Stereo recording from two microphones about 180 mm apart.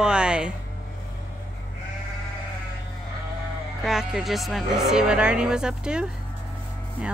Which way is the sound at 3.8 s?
Centre (ahead or behind).